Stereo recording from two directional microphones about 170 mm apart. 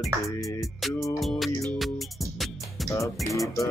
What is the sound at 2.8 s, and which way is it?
Music, 20° left (ahead or behind).